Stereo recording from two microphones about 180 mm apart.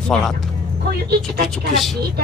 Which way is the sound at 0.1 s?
5° left (ahead or behind).